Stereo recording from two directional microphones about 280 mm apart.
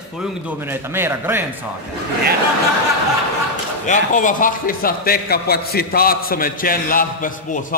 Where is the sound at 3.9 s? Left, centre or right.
Left.